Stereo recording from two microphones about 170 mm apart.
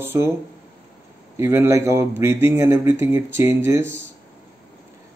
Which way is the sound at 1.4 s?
15° right (ahead or behind).